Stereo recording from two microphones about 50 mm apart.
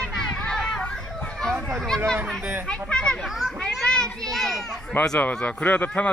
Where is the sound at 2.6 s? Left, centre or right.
Centre.